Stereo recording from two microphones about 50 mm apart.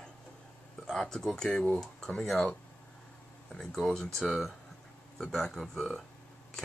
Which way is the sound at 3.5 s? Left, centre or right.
Centre.